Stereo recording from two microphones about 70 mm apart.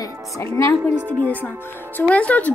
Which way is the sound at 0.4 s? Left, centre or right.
Left.